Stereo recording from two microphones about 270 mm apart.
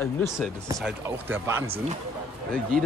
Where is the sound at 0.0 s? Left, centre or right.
Centre.